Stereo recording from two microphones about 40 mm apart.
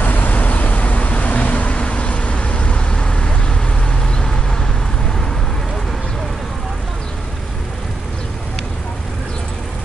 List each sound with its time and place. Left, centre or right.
0.0 s vehicle: left; by 4.6 s centre